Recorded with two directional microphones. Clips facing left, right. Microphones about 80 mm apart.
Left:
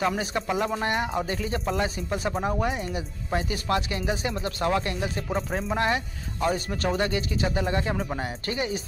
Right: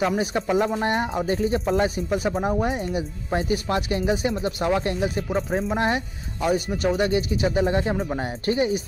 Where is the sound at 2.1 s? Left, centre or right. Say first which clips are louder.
Right 4 dB; centre.